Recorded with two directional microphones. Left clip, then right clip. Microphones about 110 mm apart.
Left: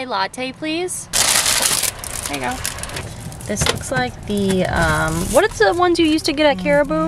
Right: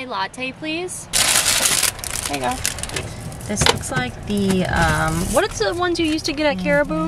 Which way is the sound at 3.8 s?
15° left (ahead or behind).